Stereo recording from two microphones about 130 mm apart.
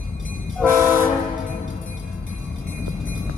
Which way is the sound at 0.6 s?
20° right (ahead or behind).